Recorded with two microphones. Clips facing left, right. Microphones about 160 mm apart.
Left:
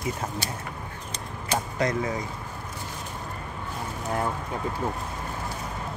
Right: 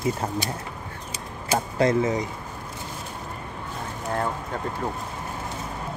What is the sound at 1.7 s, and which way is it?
Speech, 25° right (ahead or behind).